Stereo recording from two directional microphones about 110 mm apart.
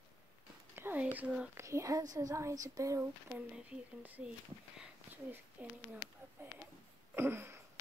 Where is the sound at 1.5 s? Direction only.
25° right (ahead or behind).